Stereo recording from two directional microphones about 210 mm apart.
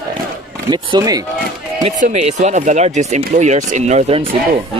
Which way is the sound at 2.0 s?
35° right (ahead or behind).